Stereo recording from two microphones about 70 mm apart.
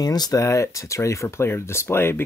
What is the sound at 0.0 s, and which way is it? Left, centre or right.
Speech, left.